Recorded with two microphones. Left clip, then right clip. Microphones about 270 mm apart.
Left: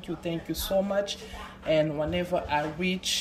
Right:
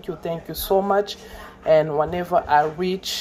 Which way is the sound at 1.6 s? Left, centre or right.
Right.